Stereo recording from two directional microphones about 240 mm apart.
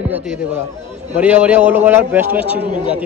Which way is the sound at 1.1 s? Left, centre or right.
Centre.